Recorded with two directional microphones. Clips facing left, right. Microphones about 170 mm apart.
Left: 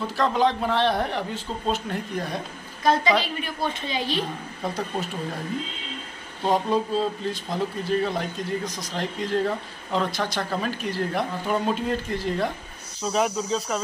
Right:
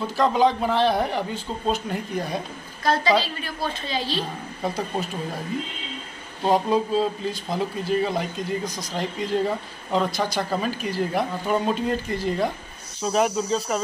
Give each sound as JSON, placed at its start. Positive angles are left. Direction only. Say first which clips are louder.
{"t": 0.0, "sound": "speech", "louder": "right 2 dB", "side_deg": 0}
{"t": 2.8, "sound": "a woman's voice", "louder": "even", "side_deg": 20}
{"t": 6.4, "sound": "speech", "louder": "right 2 dB", "side_deg": -5}